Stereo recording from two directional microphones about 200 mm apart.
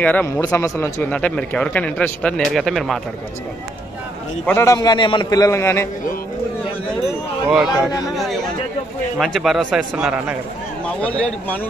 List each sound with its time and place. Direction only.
0.0 s speech: 10° left (ahead or behind)
4.5 s speech: 15° left (ahead or behind)
7.4 s speech: 5° right (ahead or behind)
9.2 s speech: centre (ahead or behind)
11.0 s speech: 5° left (ahead or behind)